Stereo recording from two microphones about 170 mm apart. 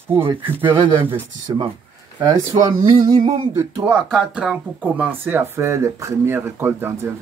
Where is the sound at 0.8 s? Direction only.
30° right (ahead or behind).